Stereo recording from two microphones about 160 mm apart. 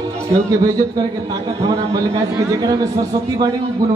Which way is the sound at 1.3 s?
20° right (ahead or behind).